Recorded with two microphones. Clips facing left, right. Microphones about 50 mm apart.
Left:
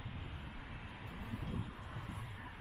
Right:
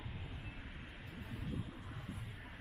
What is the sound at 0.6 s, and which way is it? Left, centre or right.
Vehicle, centre.